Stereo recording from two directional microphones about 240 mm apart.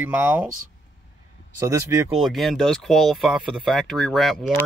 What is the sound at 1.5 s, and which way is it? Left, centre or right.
Speech, centre.